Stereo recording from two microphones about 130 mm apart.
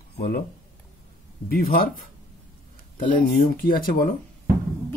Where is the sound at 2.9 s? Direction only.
90° left.